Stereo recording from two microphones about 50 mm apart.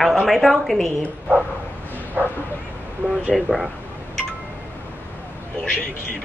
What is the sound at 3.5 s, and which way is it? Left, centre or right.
Speech, right.